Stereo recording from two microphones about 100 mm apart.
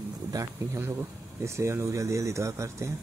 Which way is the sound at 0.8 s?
25° right (ahead or behind).